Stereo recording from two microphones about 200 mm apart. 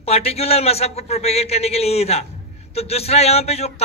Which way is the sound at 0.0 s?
30° left (ahead or behind).